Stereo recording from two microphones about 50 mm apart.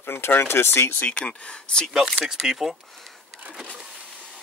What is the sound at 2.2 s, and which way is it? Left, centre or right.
Speech, centre.